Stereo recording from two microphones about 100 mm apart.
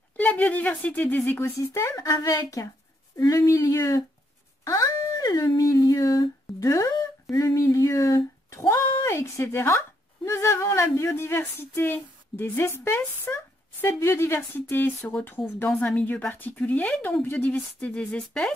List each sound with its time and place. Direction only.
0.2 s a woman's voice: 15° left (ahead or behind)
2.0 s speech: 35° left (ahead or behind)
4.6 s a sound: 35° left (ahead or behind)
6.6 s a woman's voice: 30° left (ahead or behind); by 18.5 s 10° left (ahead or behind)